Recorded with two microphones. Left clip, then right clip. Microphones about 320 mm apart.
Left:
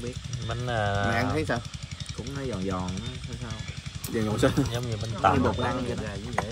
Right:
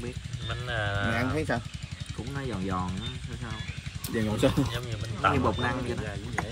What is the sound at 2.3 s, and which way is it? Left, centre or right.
Speech, centre.